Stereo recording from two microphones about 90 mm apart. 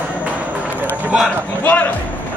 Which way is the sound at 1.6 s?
20° left (ahead or behind).